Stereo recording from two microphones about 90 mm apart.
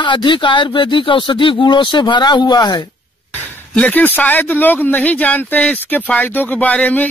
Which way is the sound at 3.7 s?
15° left (ahead or behind).